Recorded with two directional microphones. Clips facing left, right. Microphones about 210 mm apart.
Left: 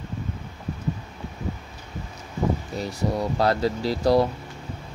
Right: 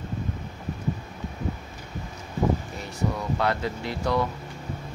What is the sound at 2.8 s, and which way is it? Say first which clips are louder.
Speech: left 4 dB; 35° left (ahead or behind).